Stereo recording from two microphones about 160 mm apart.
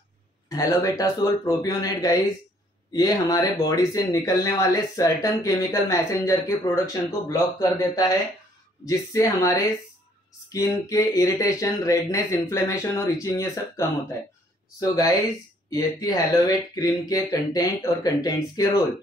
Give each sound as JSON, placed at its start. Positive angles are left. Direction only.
{"t": 0.5, "sound": "speech", "side_deg": 20}